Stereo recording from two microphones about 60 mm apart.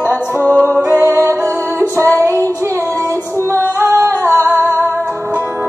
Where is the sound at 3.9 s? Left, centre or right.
Right.